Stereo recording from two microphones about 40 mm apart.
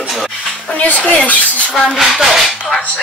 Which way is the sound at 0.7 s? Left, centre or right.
Left.